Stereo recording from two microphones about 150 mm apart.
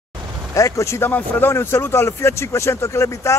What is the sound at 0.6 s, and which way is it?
Speech, 20° left (ahead or behind).